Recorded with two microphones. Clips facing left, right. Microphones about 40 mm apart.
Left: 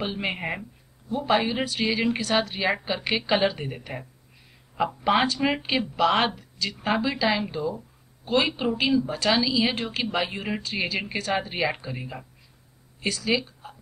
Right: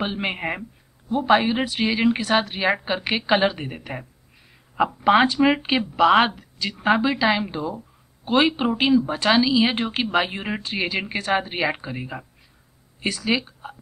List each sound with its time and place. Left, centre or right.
0.0 s a woman's voice: right
5.0 s a woman's voice: centre
6.8 s a woman's voice: right